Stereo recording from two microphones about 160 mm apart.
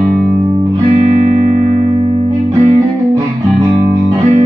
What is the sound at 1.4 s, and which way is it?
Music, 55° right (ahead or behind).